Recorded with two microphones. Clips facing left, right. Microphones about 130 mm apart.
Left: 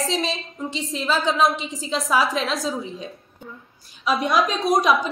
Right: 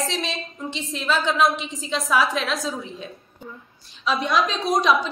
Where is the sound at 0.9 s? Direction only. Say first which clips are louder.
Even; 35° left (ahead or behind).